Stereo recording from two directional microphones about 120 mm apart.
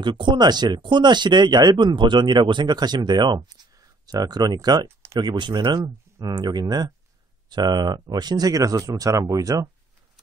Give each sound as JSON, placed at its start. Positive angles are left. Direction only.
{"t": 0.0, "sound": "speech", "side_deg": -40}